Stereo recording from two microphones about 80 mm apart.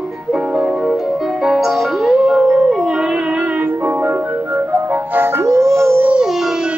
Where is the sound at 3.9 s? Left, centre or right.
Right.